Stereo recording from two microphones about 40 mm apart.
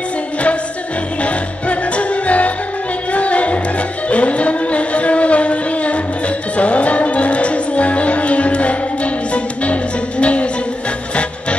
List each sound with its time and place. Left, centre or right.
1.2 s music: left